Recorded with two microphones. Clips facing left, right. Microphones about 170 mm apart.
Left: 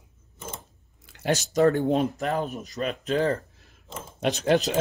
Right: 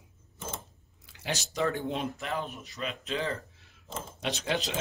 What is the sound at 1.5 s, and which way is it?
Speech, 45° left (ahead or behind).